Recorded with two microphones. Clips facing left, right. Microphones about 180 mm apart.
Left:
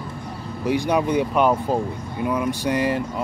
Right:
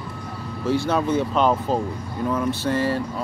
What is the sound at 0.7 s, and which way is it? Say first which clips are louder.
Speech: left 1 dB; 15° left (ahead or behind).